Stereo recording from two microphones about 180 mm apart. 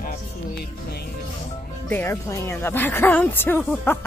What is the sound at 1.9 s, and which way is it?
Speech, 15° left (ahead or behind).